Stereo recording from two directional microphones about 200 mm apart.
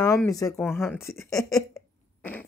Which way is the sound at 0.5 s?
Centre (ahead or behind).